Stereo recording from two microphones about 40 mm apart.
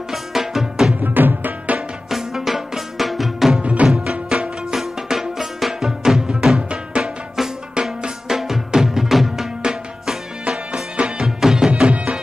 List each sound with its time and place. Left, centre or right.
0.1 s music: centre
1.0 s music: right
2.0 s music: centre
3.6 s music: right; by 9.5 s centre
9.6 s music: centre
11.2 s music: centre
11.9 s music: right